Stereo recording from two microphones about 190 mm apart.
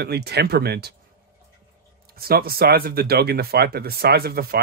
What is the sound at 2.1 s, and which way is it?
Speech, 55° right (ahead or behind).